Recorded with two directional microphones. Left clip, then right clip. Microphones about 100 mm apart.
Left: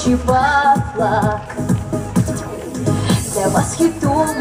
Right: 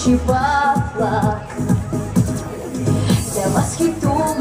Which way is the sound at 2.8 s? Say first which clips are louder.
Left 2 dB; 5° left (ahead or behind).